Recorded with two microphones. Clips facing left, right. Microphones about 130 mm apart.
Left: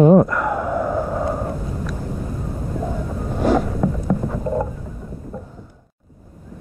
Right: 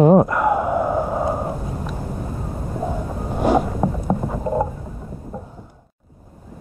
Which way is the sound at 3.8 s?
30° right (ahead or behind).